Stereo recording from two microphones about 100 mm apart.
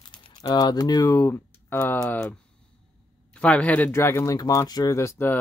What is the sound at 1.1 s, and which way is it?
Speech, 25° left (ahead or behind).